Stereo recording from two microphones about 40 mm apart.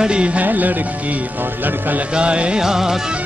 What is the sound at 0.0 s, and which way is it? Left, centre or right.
Music, right.